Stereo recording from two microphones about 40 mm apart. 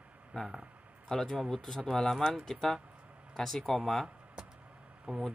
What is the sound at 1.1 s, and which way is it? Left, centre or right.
Speech, centre.